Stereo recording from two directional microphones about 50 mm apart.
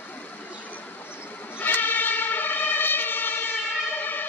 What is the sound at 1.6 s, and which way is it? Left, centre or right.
Emergency vehicle, left.